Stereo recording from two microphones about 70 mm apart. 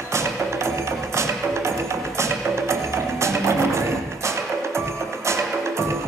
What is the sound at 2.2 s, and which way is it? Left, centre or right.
Music, right.